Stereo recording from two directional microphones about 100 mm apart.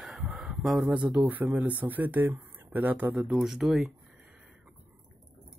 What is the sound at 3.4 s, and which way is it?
Speech, 5° right (ahead or behind).